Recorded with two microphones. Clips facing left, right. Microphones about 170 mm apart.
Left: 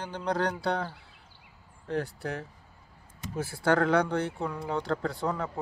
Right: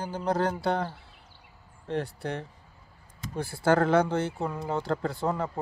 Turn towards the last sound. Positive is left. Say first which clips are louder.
# right 2 dB
turn(degrees=0)  # may be behind; listen again after turning